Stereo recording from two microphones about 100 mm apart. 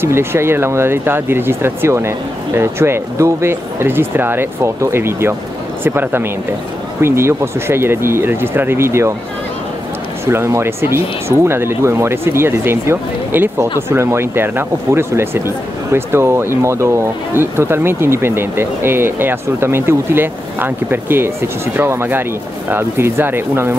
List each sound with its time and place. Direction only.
0.0 s speech: 25° right (ahead or behind)
10.2 s speech: 25° right (ahead or behind)